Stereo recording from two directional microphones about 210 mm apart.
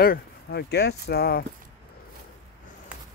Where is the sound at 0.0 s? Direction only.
50° left (ahead or behind).